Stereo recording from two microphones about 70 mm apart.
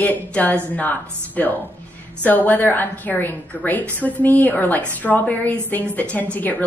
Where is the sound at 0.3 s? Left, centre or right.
Left.